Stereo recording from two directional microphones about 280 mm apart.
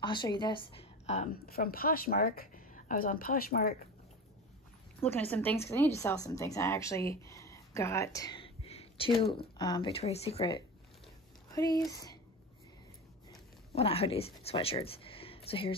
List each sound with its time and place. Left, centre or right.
0.0 s a woman's voice: centre; by 3.9 s left
5.3 s a woman's voice: centre
13.3 s a sound: left
14.4 s speech: left